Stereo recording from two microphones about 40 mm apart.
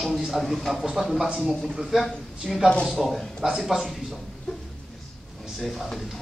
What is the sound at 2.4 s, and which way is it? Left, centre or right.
A man's voice, centre.